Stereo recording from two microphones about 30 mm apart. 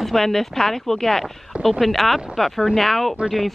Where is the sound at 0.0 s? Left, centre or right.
Centre.